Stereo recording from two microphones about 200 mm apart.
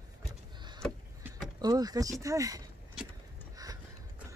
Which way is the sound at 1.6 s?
20° right (ahead or behind).